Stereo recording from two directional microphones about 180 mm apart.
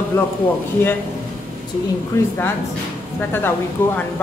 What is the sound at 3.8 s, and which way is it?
Speech, 10° left (ahead or behind).